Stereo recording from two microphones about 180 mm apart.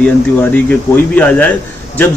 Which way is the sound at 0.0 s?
10° left (ahead or behind).